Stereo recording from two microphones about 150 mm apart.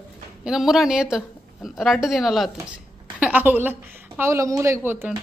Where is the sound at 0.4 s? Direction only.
5° right (ahead or behind).